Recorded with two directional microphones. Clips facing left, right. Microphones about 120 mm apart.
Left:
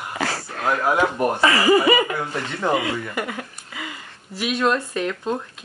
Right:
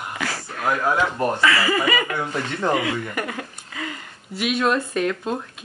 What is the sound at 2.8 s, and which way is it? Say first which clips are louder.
Speech: even; 20° left (ahead or behind).